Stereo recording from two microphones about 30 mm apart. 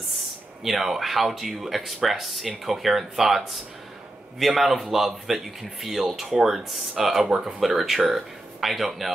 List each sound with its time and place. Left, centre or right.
0.7 s speech: centre